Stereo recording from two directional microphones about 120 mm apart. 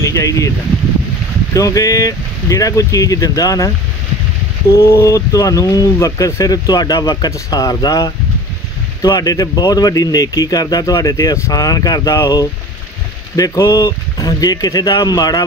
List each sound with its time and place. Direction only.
0.0 s speech: 30° left (ahead or behind)
1.5 s speech: 30° left (ahead or behind)
4.7 s speech: 20° left (ahead or behind)